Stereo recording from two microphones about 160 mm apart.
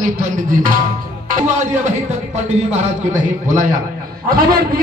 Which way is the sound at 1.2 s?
50° right (ahead or behind).